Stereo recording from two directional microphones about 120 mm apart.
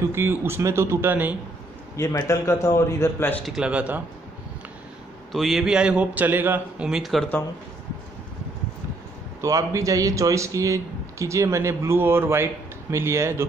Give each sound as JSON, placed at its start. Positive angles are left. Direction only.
{"t": 0.1, "sound": "speech", "side_deg": -20}
{"t": 2.0, "sound": "a man's voice", "side_deg": 25}
{"t": 3.4, "sound": "a man's voice", "side_deg": -5}
{"t": 5.3, "sound": "a man's voice", "side_deg": 0}
{"t": 9.4, "sound": "speech", "side_deg": -25}